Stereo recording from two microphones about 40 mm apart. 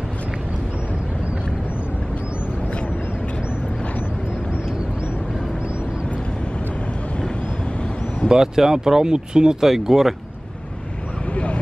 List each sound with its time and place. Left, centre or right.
8.3 s speech: centre
9.7 s speech: centre